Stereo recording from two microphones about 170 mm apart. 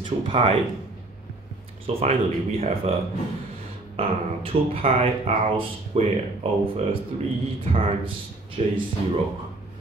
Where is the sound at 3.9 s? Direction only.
35° right (ahead or behind).